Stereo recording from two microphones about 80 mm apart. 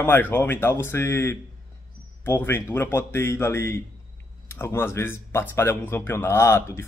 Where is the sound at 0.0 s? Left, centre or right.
Left.